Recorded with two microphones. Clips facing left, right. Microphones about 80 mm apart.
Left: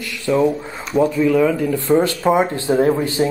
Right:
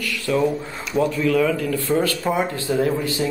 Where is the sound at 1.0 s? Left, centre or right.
Centre.